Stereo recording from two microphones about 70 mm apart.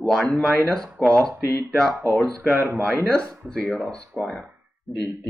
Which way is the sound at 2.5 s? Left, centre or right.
Right.